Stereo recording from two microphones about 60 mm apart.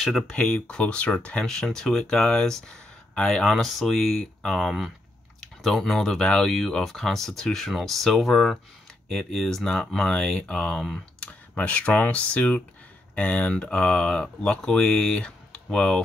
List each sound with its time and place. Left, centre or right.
0.4 s speech: centre
3.5 s speech: centre
4.6 s speech: centre
11.5 s speech: left